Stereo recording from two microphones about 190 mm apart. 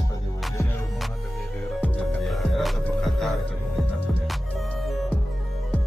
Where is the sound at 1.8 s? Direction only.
Centre (ahead or behind).